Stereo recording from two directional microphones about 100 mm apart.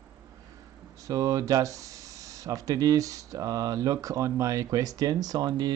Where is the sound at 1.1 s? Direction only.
35° right (ahead or behind).